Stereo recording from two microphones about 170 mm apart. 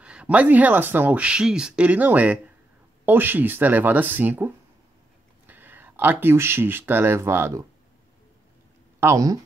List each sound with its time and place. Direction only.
0.0 s speech: 5° right (ahead or behind)
5.5 s speech: 10° right (ahead or behind)
9.0 s speech: 20° right (ahead or behind)